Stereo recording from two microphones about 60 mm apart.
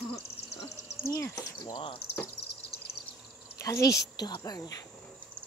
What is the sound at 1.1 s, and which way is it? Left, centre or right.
Speech, left.